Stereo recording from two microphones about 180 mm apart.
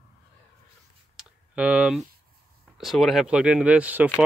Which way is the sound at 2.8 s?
Centre (ahead or behind).